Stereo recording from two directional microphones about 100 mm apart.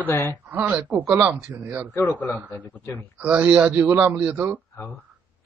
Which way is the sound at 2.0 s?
15° left (ahead or behind).